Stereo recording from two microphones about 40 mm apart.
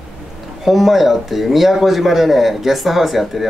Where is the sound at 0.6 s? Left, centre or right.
Centre.